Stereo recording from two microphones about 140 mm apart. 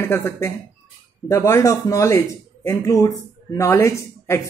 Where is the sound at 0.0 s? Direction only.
20° left (ahead or behind).